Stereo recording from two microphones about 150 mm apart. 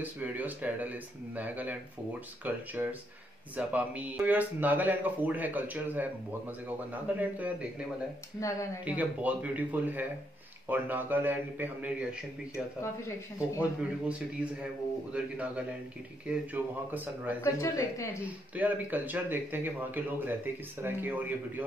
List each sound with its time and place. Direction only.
0.0 s speech: 10° right (ahead or behind)
8.4 s speech: 20° left (ahead or behind)
8.8 s speech: 10° right (ahead or behind)
13.6 s speech: 10° right (ahead or behind)
17.4 s speech: 20° left (ahead or behind)
18.2 s speech: 10° right (ahead or behind)